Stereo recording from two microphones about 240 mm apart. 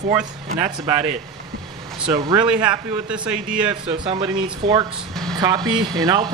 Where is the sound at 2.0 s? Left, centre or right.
Centre.